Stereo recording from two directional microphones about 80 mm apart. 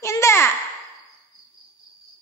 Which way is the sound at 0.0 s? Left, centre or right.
Left.